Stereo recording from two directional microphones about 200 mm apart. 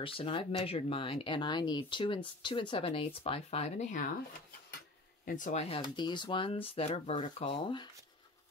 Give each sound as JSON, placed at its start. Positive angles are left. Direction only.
{"t": 0.0, "sound": "speech", "side_deg": 25}
{"t": 5.2, "sound": "speech", "side_deg": 40}